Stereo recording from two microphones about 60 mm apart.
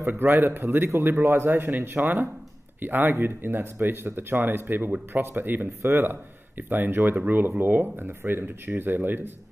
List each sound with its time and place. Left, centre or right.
0.0 s speech: right